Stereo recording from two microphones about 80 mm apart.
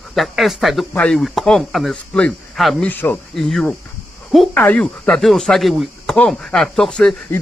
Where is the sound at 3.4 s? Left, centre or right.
Centre.